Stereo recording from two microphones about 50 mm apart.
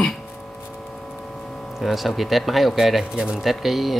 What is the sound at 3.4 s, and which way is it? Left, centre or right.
Speech, centre.